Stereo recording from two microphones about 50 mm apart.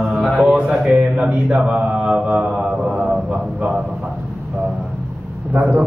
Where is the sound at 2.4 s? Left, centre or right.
Centre.